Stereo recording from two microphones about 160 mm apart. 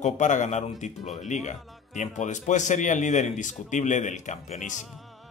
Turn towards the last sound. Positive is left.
turn(degrees=50)  # may be behind; listen again after turning